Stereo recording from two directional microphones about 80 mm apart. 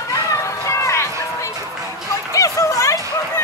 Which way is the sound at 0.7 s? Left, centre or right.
Left.